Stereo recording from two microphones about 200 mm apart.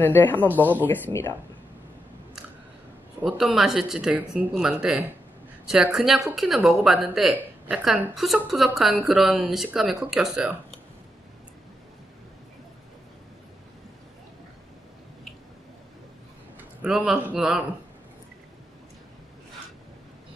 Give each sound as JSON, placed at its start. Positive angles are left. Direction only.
{"t": 0.0, "sound": "speech", "side_deg": 10}
{"t": 3.2, "sound": "speech", "side_deg": -5}
{"t": 16.8, "sound": "speech", "side_deg": -5}